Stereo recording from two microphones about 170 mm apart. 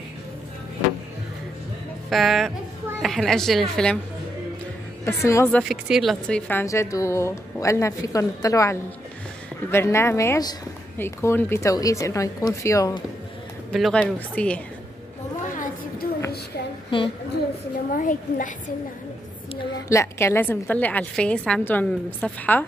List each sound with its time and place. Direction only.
2.0 s a woman's voice: centre (ahead or behind)
5.0 s a woman's voice: 15° left (ahead or behind)
5.6 s a woman's voice: 5° right (ahead or behind); by 13.0 s 20° left (ahead or behind)
13.7 s a woman's voice: centre (ahead or behind)
15.5 s a sound: 50° left (ahead or behind)
16.9 s a woman's voice: 30° left (ahead or behind)
17.9 s a woman's voice: 50° left (ahead or behind)
19.9 s a woman's voice: 15° left (ahead or behind)